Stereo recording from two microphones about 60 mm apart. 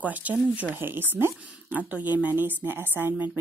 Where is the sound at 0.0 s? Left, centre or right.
Right.